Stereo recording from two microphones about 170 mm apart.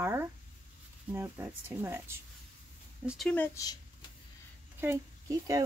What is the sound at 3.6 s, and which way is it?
Speech, 20° left (ahead or behind).